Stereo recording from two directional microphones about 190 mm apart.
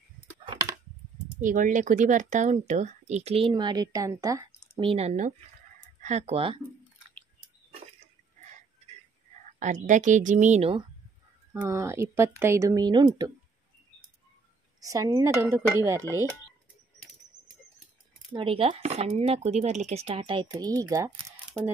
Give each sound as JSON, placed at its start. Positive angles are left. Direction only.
{"t": 0.5, "sound": "a sound", "side_deg": -20}
{"t": 1.4, "sound": "speech", "side_deg": -45}
{"t": 4.7, "sound": "speech", "side_deg": -30}
{"t": 9.6, "sound": "speech", "side_deg": -40}
{"t": 11.7, "sound": "speech", "side_deg": -15}
{"t": 14.8, "sound": "speech", "side_deg": -15}
{"t": 18.3, "sound": "speech", "side_deg": -30}